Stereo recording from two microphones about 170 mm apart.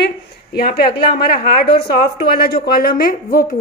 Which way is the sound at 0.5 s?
65° left (ahead or behind).